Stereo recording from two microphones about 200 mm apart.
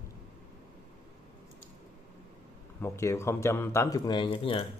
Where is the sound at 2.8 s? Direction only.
15° left (ahead or behind).